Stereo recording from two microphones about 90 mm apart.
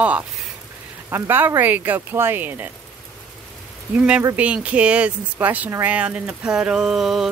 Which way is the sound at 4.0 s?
15° right (ahead or behind).